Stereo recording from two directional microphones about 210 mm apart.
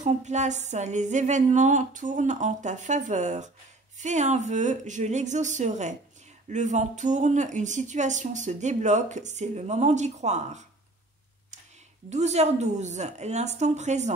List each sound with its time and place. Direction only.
0.0 s speech: 35° right (ahead or behind)
12.1 s speech: 30° right (ahead or behind)